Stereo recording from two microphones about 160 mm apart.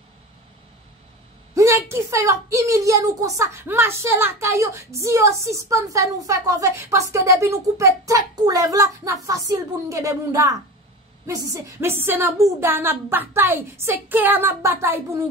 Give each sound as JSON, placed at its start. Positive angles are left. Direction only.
{"t": 1.5, "sound": "a child's voice", "side_deg": -20}